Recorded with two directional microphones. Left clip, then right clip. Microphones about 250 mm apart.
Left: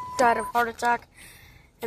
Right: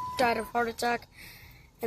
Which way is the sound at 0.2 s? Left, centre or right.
Centre.